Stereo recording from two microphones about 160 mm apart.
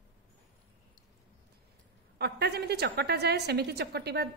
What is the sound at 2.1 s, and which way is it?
A woman's voice, 90° right.